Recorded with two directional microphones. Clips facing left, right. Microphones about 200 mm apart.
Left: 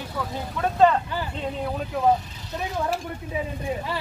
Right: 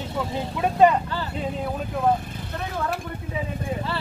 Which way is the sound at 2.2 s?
55° right (ahead or behind).